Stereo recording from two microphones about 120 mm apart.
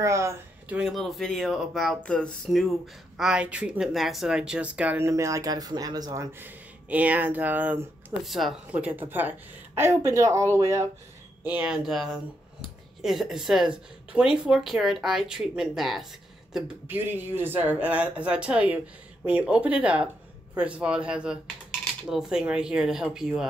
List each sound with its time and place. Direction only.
0.0 s a woman's voice: 25° right (ahead or behind)
0.7 s a woman's voice: 5° right (ahead or behind); by 6.2 s 35° right (ahead or behind)
6.4 s speech: 10° right (ahead or behind)
8.2 s a woman's voice: centre (ahead or behind)
8.7 s a woman's voice: 15° right (ahead or behind)
11.4 s a woman's voice: 10° right (ahead or behind)
16.8 s a woman's voice: 15° right (ahead or behind)